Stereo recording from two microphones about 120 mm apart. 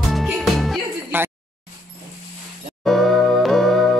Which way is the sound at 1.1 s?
15° right (ahead or behind).